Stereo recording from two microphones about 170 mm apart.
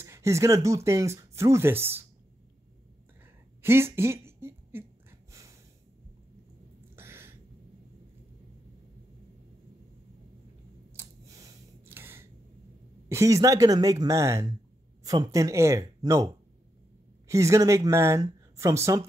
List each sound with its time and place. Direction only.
0.0 s speech: 15° right (ahead or behind)
3.6 s speech: 15° right (ahead or behind)
5.3 s snort: 20° right (ahead or behind)
7.0 s a sound: 15° right (ahead or behind)
11.0 s scissors: 20° right (ahead or behind)
13.1 s speech: 20° right (ahead or behind)
17.3 s speech: 20° right (ahead or behind)